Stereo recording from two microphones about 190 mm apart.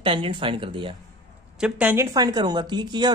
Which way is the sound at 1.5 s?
5° right (ahead or behind).